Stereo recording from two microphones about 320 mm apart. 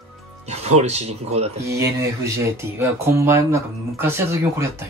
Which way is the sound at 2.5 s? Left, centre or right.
Centre.